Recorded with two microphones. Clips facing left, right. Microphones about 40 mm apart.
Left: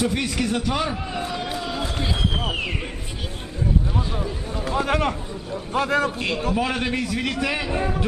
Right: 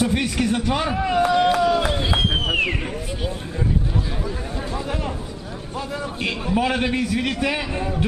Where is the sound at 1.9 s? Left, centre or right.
Right.